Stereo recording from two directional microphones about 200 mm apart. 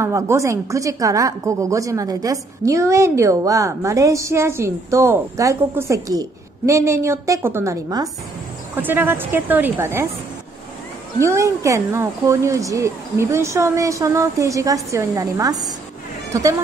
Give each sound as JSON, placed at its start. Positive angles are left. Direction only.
{"t": 0.0, "sound": "a woman's voice", "side_deg": -15}
{"t": 11.1, "sound": "a woman's voice", "side_deg": -15}